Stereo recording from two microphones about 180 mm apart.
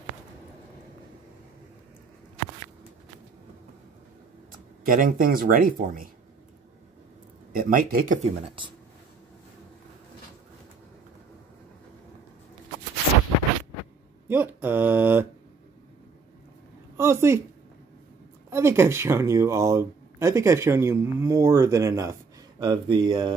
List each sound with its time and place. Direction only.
4.8 s speech: 50° right (ahead or behind)
7.5 s speech: 50° right (ahead or behind)
8.5 s speech: 25° right (ahead or behind)
14.2 s a sound: 10° right (ahead or behind)
16.9 s a sound: 15° right (ahead or behind)
18.5 s speech: 15° right (ahead or behind)